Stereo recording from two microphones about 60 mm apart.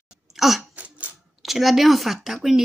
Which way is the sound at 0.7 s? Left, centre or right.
Right.